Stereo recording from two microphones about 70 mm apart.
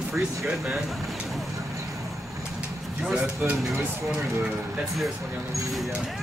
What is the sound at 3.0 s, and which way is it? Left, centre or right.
Speech, centre.